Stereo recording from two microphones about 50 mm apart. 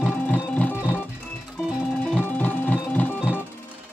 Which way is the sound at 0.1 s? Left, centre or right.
Left.